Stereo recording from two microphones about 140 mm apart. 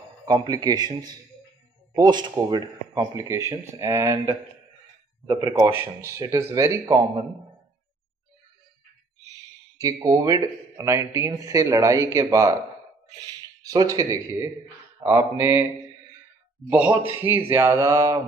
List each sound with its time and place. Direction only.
0.2 s speech: 25° right (ahead or behind)
10.0 s speech: 25° right (ahead or behind)
16.6 s speech: 10° right (ahead or behind)